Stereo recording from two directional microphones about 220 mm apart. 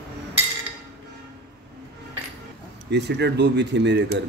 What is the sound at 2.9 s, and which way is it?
Speech, 50° right (ahead or behind).